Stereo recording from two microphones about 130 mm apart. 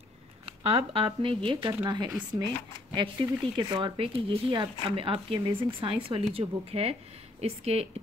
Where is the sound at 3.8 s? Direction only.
45° right (ahead or behind).